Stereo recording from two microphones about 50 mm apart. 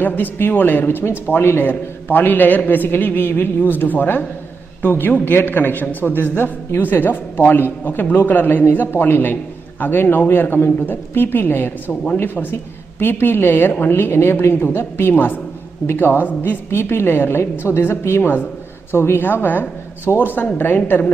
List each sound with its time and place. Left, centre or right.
0.0 s a man's voice: left